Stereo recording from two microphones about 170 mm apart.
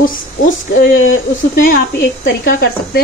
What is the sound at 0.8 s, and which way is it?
Speech, 60° left (ahead or behind).